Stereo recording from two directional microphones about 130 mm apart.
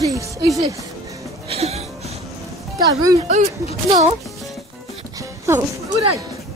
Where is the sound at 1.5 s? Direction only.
55° right (ahead or behind).